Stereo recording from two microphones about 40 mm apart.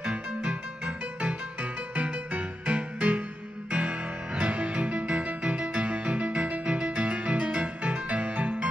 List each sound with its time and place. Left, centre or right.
0.0 s music: right